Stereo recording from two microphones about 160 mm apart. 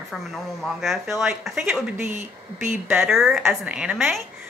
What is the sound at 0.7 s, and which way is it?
Speech, centre (ahead or behind).